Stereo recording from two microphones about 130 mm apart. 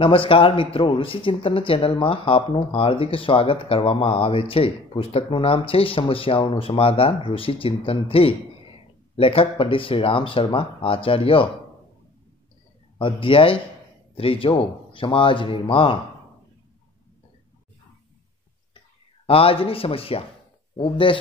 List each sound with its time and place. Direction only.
0.0 s speech: 45° left (ahead or behind)
13.0 s speech: 45° left (ahead or behind)
19.2 s speech: 45° left (ahead or behind)